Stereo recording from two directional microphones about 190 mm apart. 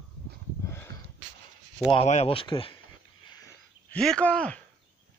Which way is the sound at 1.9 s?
35° left (ahead or behind).